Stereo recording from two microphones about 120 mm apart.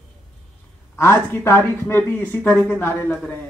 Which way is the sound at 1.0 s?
20° left (ahead or behind).